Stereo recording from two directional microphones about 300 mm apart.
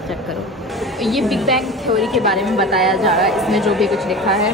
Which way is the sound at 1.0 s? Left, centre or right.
Centre.